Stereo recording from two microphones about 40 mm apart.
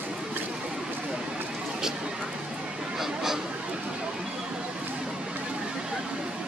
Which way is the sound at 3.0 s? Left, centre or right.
Centre.